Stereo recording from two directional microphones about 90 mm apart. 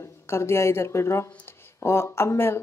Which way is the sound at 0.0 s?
30° left (ahead or behind).